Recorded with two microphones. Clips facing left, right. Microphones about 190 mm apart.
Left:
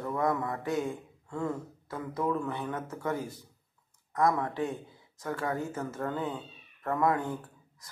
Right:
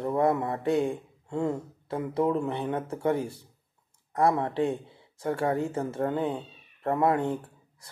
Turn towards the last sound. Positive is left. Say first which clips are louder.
# right 1 dB
turn(degrees=-30)  # may be behind; listen again after turning